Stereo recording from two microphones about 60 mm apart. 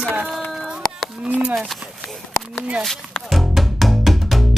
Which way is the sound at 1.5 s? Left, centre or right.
Centre.